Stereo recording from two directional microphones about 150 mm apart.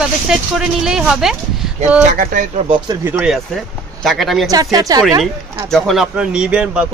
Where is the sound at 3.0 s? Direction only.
10° right (ahead or behind).